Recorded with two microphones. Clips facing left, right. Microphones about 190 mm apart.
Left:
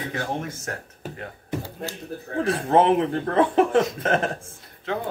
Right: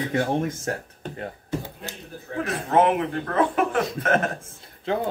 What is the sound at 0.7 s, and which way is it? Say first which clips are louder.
Speech: right 4 dB; 30° right (ahead or behind).